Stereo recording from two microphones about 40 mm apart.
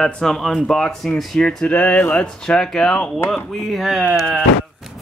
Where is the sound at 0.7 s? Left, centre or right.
Centre.